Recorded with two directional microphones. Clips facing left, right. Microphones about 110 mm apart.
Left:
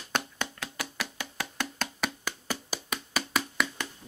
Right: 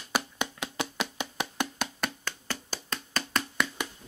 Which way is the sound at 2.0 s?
10° left (ahead or behind).